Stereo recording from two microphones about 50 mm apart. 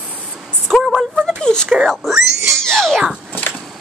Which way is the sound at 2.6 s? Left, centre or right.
Centre.